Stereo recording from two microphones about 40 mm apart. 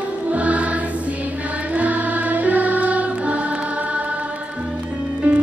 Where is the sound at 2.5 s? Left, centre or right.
Right.